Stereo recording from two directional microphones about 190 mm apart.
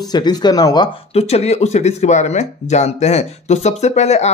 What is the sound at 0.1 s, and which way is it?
Speech, 20° left (ahead or behind).